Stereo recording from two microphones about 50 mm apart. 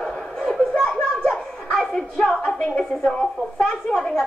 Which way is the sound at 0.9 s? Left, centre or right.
Centre.